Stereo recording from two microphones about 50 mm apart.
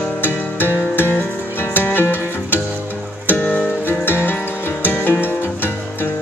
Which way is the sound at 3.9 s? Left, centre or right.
Left.